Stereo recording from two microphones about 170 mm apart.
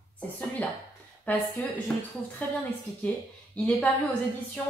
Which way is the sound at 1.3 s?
10° left (ahead or behind).